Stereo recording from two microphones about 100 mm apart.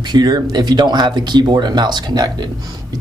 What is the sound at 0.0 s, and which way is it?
Speech, 45° right (ahead or behind).